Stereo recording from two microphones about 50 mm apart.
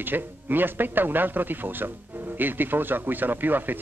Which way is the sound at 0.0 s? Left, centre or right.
Right.